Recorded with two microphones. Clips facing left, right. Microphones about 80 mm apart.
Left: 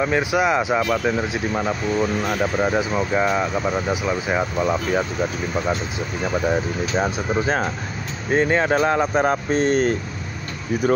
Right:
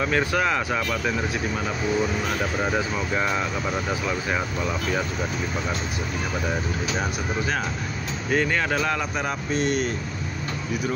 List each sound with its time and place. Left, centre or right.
0.0 s speech: centre
6.5 s speech: left